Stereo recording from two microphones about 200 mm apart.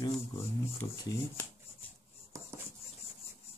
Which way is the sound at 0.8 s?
20° left (ahead or behind).